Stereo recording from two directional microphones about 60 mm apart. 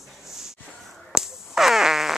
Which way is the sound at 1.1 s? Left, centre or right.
Centre.